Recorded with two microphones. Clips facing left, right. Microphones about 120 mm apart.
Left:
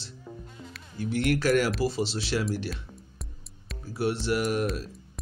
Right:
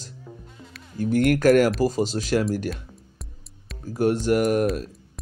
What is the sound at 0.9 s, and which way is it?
Speech, 45° right (ahead or behind).